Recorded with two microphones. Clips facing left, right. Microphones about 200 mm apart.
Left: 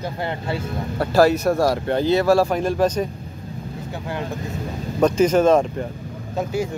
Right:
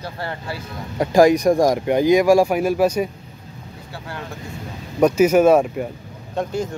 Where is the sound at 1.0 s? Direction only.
15° right (ahead or behind).